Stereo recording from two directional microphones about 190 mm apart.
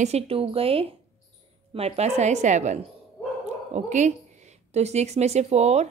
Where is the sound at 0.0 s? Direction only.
30° right (ahead or behind).